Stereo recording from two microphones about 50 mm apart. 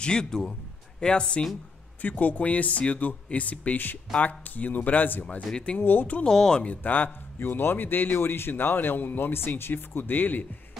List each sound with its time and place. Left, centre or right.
0.0 s a man's voice: centre
2.0 s speech: left
6.2 s a man's voice: centre
6.6 s speech: left
7.3 s a man's voice: left